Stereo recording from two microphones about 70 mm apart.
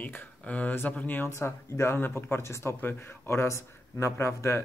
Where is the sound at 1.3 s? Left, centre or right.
Left.